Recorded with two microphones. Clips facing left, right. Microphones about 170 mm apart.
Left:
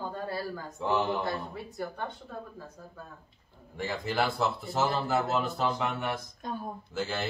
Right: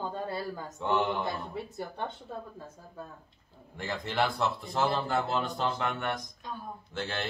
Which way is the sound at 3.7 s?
Centre (ahead or behind).